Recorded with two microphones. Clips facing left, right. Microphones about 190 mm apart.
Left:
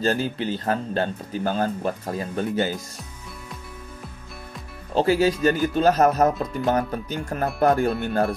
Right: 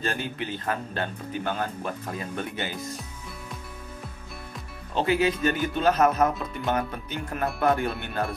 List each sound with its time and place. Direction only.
0.0 s speech: 35° left (ahead or behind)
4.9 s speech: 40° left (ahead or behind)